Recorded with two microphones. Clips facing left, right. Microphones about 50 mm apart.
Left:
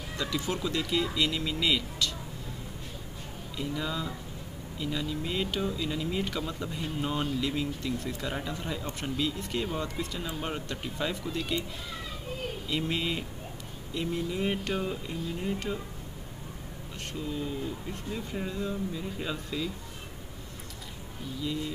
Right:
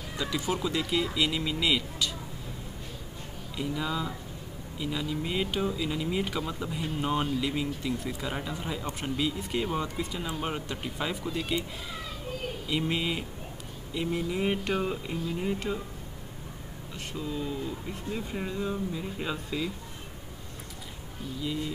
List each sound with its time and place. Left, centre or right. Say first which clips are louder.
0.2 s speech: right 2 dB; centre
3.5 s speech: right 2 dB; centre
12.6 s speech: right 2 dB; centre
14.7 s a sound: right 2 dB; centre
15.4 s speech: right 1 dB; centre
17.9 s speech: right 1 dB; centre